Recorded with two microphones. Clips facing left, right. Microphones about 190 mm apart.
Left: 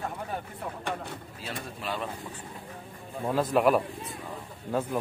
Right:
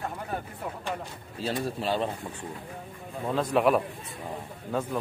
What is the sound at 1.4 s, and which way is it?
Speech, 30° right (ahead or behind).